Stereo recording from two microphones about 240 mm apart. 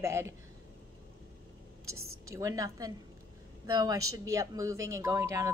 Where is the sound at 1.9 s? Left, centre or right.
Right.